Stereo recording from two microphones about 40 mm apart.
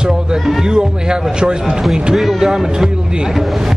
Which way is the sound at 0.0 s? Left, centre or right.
Centre.